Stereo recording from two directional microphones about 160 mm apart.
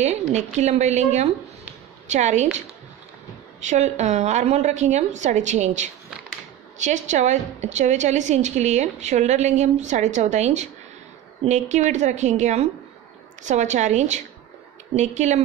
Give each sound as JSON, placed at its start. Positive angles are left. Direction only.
{"t": 0.0, "sound": "a woman's voice", "side_deg": -45}
{"t": 3.6, "sound": "a woman's voice", "side_deg": -45}